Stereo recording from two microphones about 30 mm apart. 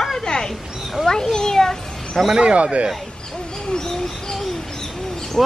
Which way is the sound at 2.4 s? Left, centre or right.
Right.